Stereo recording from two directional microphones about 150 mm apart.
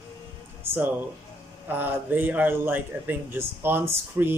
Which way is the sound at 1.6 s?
10° right (ahead or behind).